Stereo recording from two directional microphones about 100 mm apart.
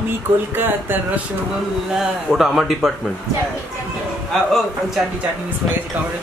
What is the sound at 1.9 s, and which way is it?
Speech, 5° right (ahead or behind).